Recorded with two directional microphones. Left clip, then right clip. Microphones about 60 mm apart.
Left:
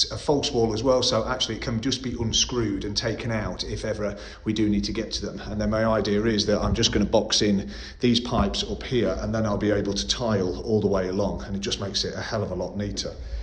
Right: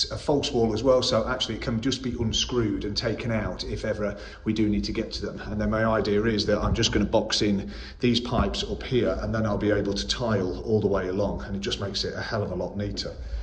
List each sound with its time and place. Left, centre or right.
0.0 s speech: left
6.2 s speech: left
6.7 s speech: left